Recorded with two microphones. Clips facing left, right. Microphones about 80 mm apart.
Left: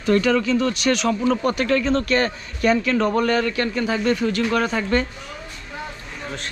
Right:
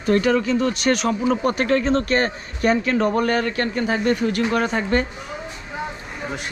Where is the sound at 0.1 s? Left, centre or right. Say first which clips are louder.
Even; centre.